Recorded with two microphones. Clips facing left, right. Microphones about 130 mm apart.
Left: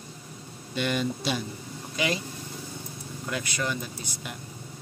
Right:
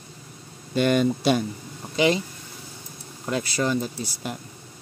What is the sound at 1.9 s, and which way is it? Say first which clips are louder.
Speech: right 8 dB; 25° right (ahead or behind).